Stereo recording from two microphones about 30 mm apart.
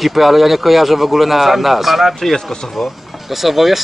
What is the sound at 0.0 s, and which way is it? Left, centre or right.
A man's voice, centre.